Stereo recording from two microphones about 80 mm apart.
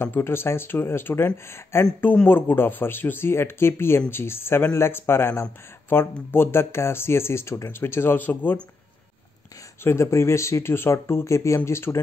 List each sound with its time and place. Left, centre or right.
0.0 s speech: left
9.8 s speech: left